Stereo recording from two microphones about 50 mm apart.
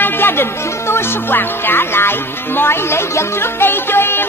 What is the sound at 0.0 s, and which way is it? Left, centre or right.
Music, left.